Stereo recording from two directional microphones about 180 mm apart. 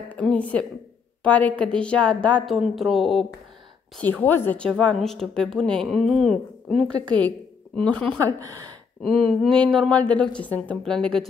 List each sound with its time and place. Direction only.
0.1 s a woman's voice: 5° left (ahead or behind)
8.4 s speech: 20° right (ahead or behind)
9.2 s a woman's voice: 5° left (ahead or behind)